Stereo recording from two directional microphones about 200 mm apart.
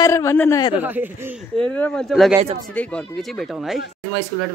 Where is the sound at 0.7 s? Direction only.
10° right (ahead or behind).